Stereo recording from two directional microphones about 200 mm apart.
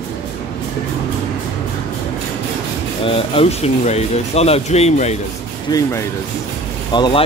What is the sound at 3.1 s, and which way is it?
Speech, 30° left (ahead or behind).